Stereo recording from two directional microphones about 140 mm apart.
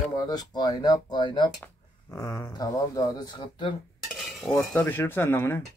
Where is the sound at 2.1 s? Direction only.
20° left (ahead or behind).